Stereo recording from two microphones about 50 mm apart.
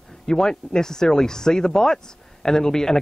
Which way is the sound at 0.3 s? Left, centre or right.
Centre.